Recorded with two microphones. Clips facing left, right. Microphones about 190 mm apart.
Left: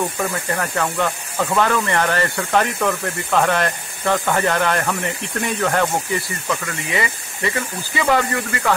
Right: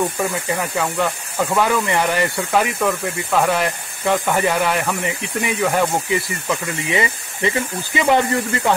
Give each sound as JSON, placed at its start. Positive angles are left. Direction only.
{"t": 0.2, "sound": "speech", "side_deg": -10}
{"t": 6.9, "sound": "speech", "side_deg": -20}